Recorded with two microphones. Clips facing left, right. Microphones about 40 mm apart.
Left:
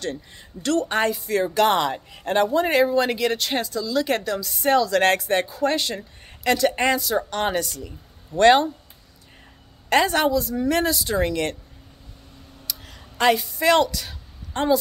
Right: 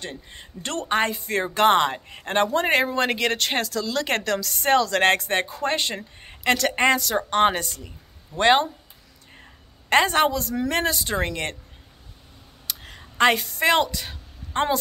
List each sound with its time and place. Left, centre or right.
0.3 s speech: right
3.6 s speech: right
4.6 s speech: right
8.4 s speech: right
9.8 s speech: right
10.3 s speech: right
10.7 s speech: right
12.6 s a sound: right
13.3 s speech: right
13.7 s speech: right